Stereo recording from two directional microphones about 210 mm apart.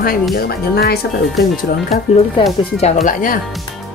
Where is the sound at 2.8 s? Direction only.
40° left (ahead or behind).